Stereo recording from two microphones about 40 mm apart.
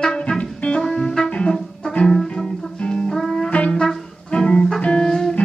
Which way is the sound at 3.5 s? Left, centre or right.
Left.